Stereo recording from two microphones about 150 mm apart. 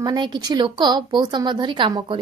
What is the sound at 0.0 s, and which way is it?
A woman's voice, 30° right (ahead or behind).